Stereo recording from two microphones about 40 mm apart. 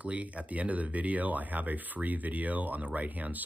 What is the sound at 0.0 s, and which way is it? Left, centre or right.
Speech, right.